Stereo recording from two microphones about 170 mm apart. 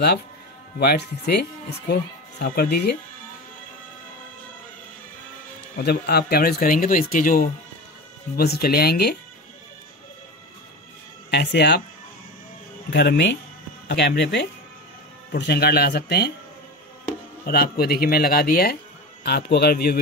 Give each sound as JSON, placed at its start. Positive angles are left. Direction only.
{"t": 0.7, "sound": "speech", "side_deg": 70}
{"t": 5.8, "sound": "speech", "side_deg": 70}
{"t": 8.4, "sound": "speech", "side_deg": 65}
{"t": 11.2, "sound": "speech", "side_deg": 80}
{"t": 12.9, "sound": "speech", "side_deg": 90}
{"t": 15.3, "sound": "speech", "side_deg": 75}
{"t": 17.5, "sound": "speech", "side_deg": 65}